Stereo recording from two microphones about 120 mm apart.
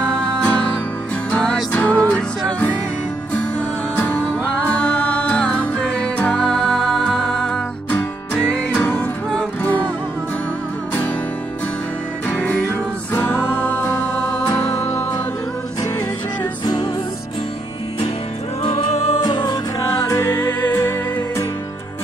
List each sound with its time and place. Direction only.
0.0 s music: 10° left (ahead or behind)
3.9 s music: 15° left (ahead or behind)
12.3 s music: 15° left (ahead or behind)
16.6 s music: 35° left (ahead or behind)
18.6 s music: 50° left (ahead or behind)
19.2 s music: 40° left (ahead or behind)
20.1 s music: 20° left (ahead or behind)